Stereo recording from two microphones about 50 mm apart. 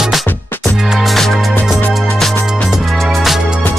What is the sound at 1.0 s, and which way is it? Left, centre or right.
Music, centre.